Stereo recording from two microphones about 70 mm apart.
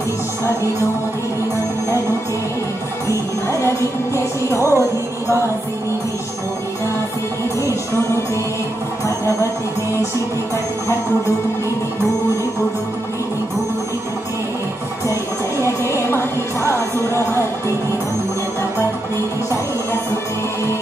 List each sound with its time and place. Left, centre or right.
3.1 s music: left
15.8 s music: left